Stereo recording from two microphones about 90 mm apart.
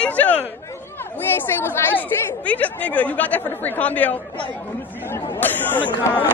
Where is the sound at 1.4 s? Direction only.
25° left (ahead or behind).